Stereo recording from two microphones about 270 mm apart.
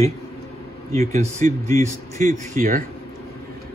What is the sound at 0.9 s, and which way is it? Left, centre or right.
Speech, right.